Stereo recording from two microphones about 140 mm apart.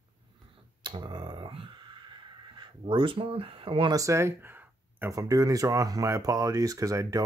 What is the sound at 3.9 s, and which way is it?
Speech, 20° right (ahead or behind).